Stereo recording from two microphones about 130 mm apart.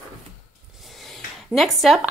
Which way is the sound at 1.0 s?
Centre (ahead or behind).